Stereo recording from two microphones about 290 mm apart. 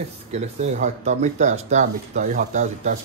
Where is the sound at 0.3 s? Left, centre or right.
Right.